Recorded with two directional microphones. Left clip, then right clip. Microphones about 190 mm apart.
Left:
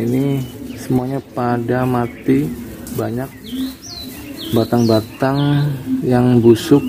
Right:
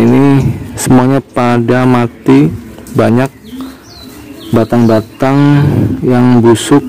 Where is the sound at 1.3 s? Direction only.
25° right (ahead or behind).